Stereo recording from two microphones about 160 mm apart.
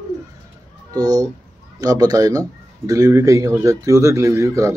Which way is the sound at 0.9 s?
25° right (ahead or behind).